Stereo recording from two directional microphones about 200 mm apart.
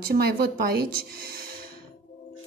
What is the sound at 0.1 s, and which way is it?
A woman's voice, 50° right (ahead or behind).